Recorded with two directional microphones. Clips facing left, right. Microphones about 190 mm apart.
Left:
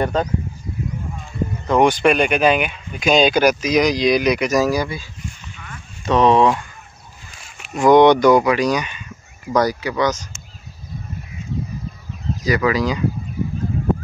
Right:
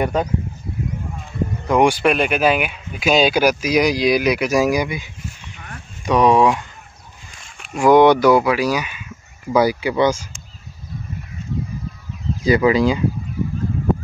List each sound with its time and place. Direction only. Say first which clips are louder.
0.0 s speech: even; 10° right (ahead or behind)
1.7 s speech: left 1 dB; 10° right (ahead or behind)
7.7 s speech: even; 10° right (ahead or behind)
9.8 s speech: right 3 dB; 25° right (ahead or behind)
12.4 s speech: right 4 dB; 25° right (ahead or behind)